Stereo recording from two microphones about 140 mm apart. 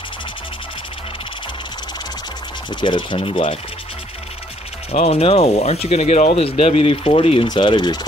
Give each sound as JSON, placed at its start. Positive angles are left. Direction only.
{"t": 2.7, "sound": "speech", "side_deg": 35}
{"t": 4.9, "sound": "speech", "side_deg": 45}